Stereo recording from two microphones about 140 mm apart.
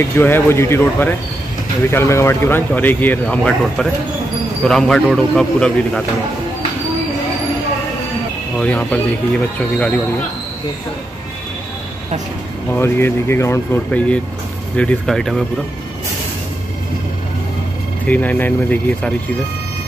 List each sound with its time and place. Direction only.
0.2 s speech: 15° left (ahead or behind)
8.5 s speech: 10° left (ahead or behind)
12.7 s speech: 15° left (ahead or behind)
18.0 s speech: 10° left (ahead or behind)